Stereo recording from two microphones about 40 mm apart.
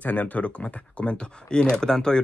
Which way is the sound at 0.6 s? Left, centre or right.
Left.